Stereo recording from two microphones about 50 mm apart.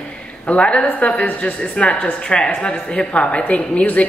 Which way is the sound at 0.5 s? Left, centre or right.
Left.